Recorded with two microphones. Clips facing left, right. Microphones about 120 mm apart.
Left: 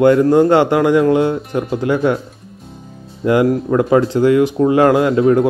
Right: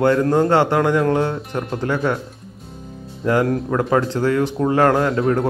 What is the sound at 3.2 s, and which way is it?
Speech, 15° left (ahead or behind).